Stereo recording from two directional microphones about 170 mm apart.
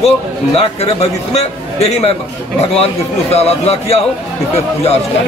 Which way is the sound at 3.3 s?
40° left (ahead or behind).